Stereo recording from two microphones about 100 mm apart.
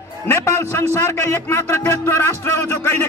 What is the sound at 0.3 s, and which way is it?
A man's voice, 25° left (ahead or behind).